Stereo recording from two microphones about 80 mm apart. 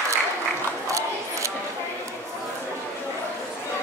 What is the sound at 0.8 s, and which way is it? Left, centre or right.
Crowd, right.